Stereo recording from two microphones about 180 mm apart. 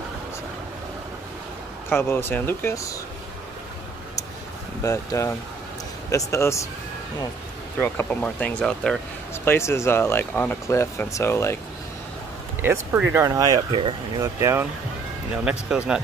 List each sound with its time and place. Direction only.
1.9 s speech: 10° left (ahead or behind)
4.8 s speech: 15° left (ahead or behind)
7.8 s speech: 10° left (ahead or behind)
13.1 s speech: 15° right (ahead or behind)
14.2 s speech: 15° right (ahead or behind)